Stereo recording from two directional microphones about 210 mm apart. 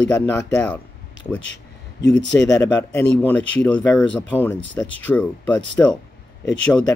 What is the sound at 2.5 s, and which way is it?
Speech, 15° left (ahead or behind).